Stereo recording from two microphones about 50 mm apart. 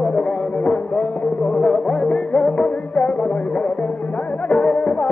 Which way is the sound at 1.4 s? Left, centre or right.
Centre.